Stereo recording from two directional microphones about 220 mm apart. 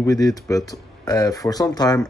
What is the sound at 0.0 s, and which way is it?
Speech, 15° left (ahead or behind).